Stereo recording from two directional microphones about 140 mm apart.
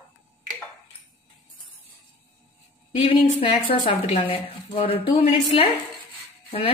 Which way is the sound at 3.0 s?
40° left (ahead or behind).